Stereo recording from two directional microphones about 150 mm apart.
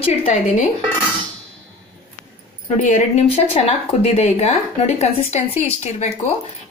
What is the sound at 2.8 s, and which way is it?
Speech, 55° left (ahead or behind).